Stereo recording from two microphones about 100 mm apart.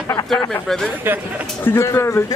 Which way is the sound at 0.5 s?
5° left (ahead or behind).